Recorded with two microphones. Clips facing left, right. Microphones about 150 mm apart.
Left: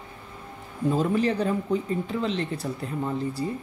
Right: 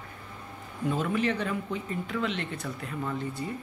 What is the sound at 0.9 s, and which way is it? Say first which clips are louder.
Speech: left 4 dB; 35° left (ahead or behind).